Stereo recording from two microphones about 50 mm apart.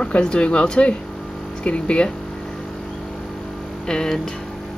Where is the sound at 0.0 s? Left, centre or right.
Centre.